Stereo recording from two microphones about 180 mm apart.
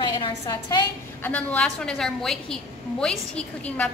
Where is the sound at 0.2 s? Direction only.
25° left (ahead or behind).